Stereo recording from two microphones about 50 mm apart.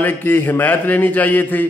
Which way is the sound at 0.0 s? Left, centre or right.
Left.